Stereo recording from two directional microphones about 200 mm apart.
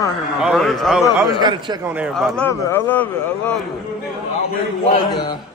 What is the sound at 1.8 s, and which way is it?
Speech, 5° right (ahead or behind).